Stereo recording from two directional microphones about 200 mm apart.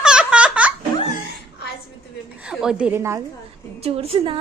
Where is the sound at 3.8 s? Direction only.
30° right (ahead or behind).